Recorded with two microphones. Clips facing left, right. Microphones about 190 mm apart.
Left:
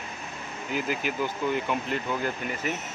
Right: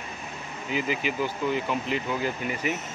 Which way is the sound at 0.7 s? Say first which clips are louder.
Right 1 dB; centre (ahead or behind).